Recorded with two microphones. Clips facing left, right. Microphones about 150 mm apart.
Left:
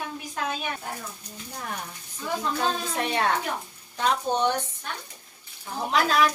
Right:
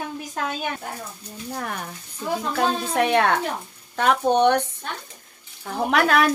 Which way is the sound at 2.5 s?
65° right (ahead or behind).